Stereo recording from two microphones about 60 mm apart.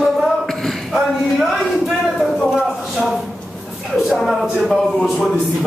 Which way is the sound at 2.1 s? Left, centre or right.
Centre.